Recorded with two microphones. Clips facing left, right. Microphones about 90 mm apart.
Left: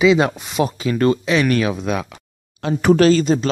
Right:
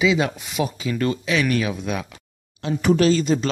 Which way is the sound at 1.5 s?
55° left (ahead or behind).